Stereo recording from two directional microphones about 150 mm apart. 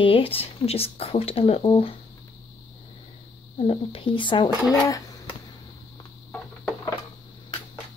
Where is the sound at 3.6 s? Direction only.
35° left (ahead or behind).